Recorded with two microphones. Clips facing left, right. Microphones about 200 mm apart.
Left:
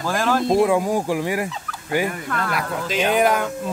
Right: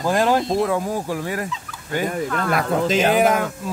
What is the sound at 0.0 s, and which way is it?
Speech, 20° right (ahead or behind).